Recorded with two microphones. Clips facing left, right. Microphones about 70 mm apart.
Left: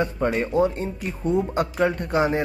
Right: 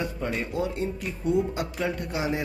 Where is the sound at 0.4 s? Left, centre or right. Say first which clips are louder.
Left 7 dB; left.